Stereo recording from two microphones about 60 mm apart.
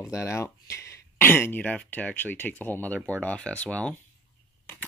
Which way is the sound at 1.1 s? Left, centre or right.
Left.